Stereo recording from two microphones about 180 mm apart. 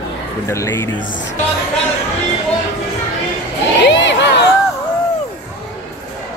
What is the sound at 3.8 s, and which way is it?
Crowd, 80° left.